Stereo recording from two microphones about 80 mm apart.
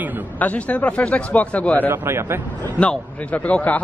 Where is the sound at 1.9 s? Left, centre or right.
Right.